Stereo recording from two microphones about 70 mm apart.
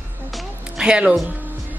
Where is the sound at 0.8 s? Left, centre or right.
Centre.